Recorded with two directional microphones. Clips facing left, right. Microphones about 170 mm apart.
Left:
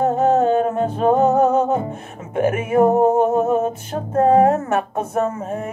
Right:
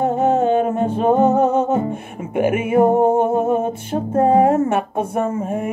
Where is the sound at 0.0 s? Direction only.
10° right (ahead or behind).